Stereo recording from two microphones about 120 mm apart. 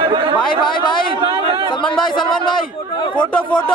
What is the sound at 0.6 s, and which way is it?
Speech, 40° left (ahead or behind).